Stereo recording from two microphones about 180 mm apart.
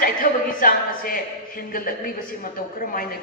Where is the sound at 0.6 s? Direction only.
50° left (ahead or behind).